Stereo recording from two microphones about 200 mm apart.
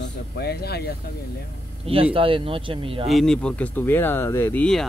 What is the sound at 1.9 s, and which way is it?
Speech, 30° right (ahead or behind).